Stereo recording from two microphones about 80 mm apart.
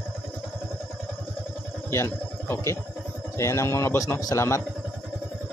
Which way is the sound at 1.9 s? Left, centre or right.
Left.